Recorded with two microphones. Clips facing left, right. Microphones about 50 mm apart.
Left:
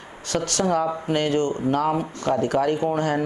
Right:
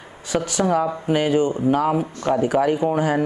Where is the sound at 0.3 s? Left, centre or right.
Centre.